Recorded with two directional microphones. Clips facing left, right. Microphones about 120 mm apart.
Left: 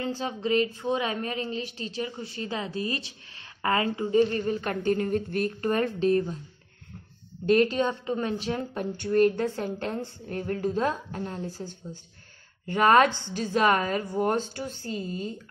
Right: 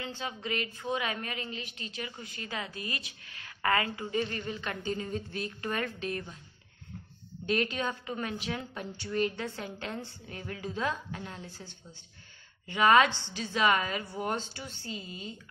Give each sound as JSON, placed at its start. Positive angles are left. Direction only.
{"t": 0.0, "sound": "a woman's voice", "side_deg": 35}
{"t": 5.7, "sound": "a woman's voice", "side_deg": 35}
{"t": 7.4, "sound": "a woman's voice", "side_deg": 40}
{"t": 8.5, "sound": "a woman's voice", "side_deg": 55}